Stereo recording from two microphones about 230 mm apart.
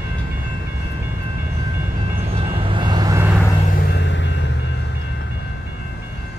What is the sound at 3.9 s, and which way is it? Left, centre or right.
Vehicle, left.